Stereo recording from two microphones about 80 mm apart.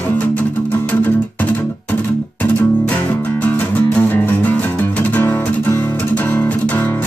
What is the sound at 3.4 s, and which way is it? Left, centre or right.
Music, left.